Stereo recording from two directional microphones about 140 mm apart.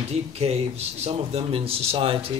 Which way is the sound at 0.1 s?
50° right (ahead or behind).